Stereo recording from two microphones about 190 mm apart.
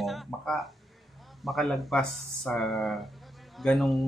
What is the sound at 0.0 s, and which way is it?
Music, centre (ahead or behind).